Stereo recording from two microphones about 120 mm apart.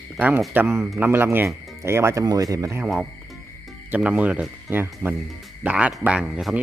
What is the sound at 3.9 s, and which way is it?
Speech, 10° right (ahead or behind).